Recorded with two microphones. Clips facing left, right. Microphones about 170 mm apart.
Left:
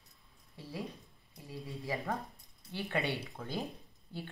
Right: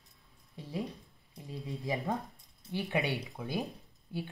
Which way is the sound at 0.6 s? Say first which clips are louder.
Right 4 dB; 20° right (ahead or behind).